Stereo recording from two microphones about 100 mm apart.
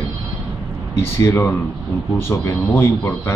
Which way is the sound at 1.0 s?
25° left (ahead or behind).